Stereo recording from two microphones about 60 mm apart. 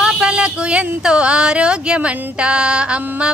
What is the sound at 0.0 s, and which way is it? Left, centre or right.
Speech, centre.